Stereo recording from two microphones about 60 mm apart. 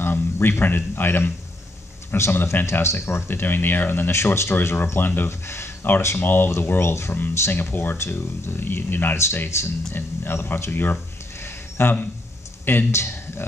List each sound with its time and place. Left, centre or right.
0.0 s a man's voice: left
2.4 s speech: left